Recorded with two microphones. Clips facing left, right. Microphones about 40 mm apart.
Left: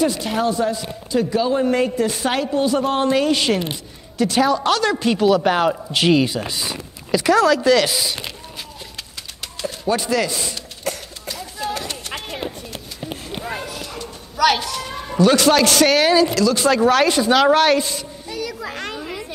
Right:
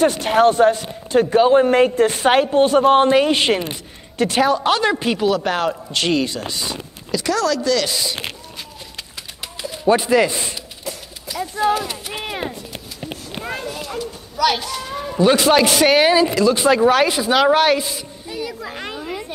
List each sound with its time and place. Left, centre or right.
0.0 s a man's voice: right
4.6 s a man's voice: centre
5.2 s speech: centre
7.1 s speech: centre
7.9 s speech: centre
9.6 s speech: centre
10.9 s horse: left
13.7 s a sound: centre
15.1 s a man's voice: centre
18.3 s children playing: centre
18.8 s chatter: centre